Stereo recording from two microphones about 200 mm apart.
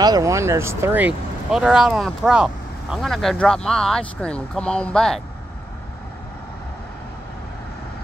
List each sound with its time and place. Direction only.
0.0 s speech: 15° right (ahead or behind); by 5.2 s 5° left (ahead or behind)